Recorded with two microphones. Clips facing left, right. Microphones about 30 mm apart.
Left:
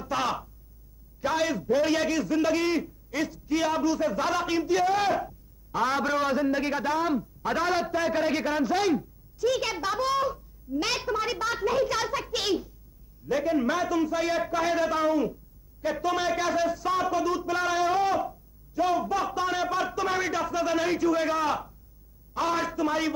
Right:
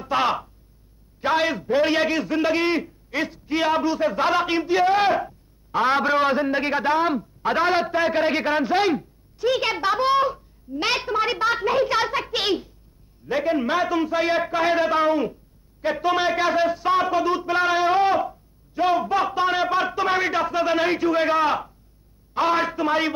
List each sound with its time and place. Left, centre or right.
0.0 s a man's voice: right